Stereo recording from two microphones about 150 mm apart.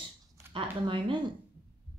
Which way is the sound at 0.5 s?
35° right (ahead or behind).